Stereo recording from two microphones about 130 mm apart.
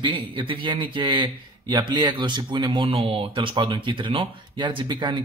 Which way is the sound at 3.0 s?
45° right (ahead or behind).